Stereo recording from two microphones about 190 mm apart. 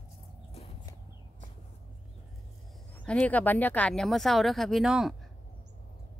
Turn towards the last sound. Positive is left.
turn(degrees=0)  # may be behind; listen again after turning